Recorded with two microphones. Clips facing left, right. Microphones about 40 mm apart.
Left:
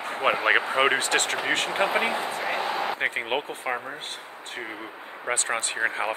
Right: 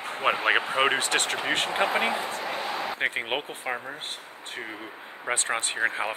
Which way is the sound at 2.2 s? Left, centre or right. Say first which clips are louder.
Left 3 dB; left.